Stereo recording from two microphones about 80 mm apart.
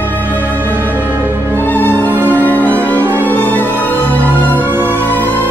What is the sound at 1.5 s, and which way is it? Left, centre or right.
Music, left.